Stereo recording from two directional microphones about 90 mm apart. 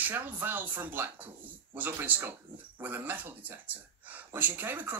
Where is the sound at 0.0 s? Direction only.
20° right (ahead or behind).